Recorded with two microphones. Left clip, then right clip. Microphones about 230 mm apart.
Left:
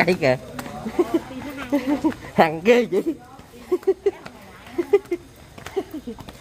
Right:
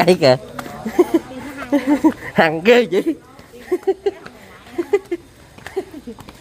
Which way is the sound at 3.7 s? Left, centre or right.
Centre.